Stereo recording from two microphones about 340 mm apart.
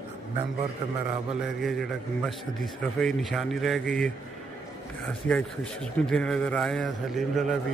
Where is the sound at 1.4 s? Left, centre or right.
Centre.